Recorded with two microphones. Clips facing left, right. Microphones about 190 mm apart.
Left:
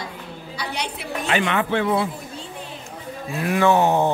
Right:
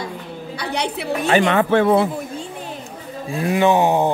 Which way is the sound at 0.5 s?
60° right (ahead or behind).